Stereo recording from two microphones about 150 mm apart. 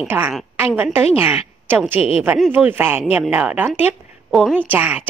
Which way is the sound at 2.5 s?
10° right (ahead or behind).